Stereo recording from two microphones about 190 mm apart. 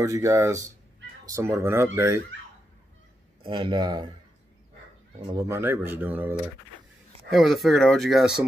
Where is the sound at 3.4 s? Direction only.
25° right (ahead or behind).